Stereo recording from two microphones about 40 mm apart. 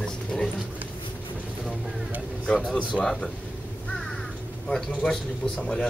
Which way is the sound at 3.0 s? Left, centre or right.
Centre.